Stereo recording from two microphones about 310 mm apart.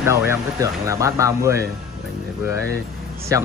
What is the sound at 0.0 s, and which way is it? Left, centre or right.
Speech, centre.